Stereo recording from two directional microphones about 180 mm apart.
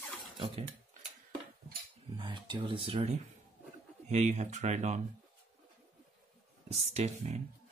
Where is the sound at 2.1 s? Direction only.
25° right (ahead or behind).